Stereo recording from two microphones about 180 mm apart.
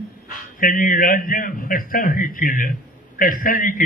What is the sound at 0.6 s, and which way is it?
A man's voice, 50° left (ahead or behind).